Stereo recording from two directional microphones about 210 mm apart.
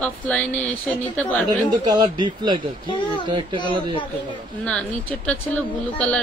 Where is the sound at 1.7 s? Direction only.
20° right (ahead or behind).